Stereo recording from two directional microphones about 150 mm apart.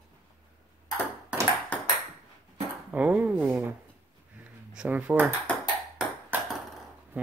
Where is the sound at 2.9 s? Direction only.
10° right (ahead or behind).